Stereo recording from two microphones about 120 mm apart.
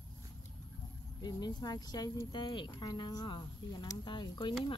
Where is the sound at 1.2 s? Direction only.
35° left (ahead or behind).